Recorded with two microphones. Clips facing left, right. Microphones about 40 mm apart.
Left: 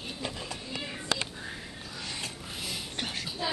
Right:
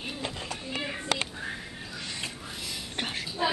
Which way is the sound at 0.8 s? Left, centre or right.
Right.